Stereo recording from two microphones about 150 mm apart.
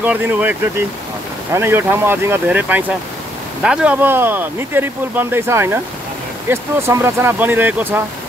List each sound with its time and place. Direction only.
0.0 s speech: 10° right (ahead or behind)